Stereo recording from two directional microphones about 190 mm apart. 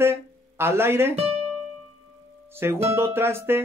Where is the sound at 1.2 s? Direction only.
35° right (ahead or behind).